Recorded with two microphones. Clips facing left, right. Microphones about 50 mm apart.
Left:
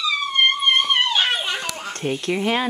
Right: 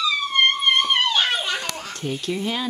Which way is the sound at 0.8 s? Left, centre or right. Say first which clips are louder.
Left 1 dB; centre.